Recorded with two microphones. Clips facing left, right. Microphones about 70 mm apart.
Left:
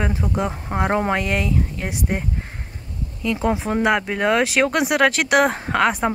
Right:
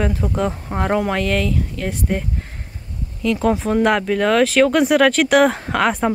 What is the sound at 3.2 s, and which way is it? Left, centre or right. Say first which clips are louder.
Speech: right 3 dB; centre.